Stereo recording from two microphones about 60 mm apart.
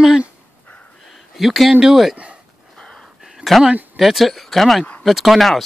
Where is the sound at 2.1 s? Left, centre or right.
Centre.